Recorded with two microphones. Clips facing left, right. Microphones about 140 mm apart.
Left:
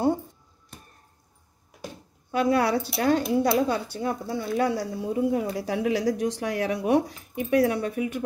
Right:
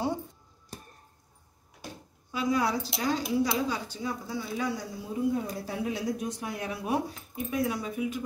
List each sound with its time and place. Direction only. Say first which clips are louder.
2.3 s a woman's voice: left 5 dB; 65° left (ahead or behind)